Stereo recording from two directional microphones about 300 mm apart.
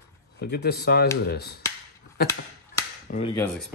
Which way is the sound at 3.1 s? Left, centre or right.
Left.